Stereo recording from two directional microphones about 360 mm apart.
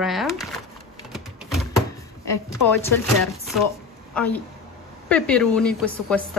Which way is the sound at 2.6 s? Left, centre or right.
Left.